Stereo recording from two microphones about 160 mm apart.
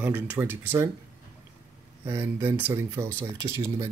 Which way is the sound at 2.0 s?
15° right (ahead or behind).